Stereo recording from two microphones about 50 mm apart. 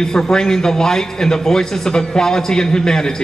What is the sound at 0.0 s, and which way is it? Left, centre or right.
A man's voice, centre.